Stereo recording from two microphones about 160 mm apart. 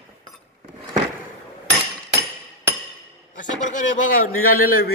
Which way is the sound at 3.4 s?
50° left (ahead or behind).